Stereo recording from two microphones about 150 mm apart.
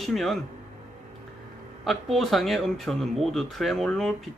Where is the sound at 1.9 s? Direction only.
Centre (ahead or behind).